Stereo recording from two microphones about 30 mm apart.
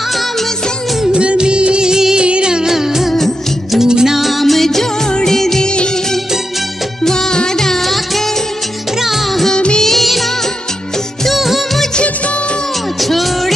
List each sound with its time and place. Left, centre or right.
1.1 s music: right
1.9 s music: right
2.7 s music: centre
4.2 s music: centre
5.2 s music of bollywood: centre
7.0 s music: centre
9.9 s music of bollywood: centre
11.3 s music: centre
13.0 s music: centre